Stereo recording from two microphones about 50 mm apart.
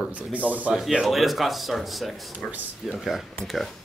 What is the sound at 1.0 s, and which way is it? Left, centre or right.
Speech, centre.